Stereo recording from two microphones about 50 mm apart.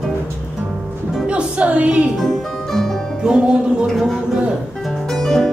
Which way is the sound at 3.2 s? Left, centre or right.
Centre.